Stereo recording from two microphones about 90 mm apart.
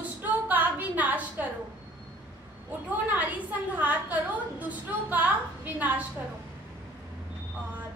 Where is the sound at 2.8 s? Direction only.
15° right (ahead or behind).